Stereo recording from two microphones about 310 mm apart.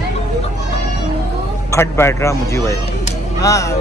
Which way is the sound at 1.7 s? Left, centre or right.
Centre.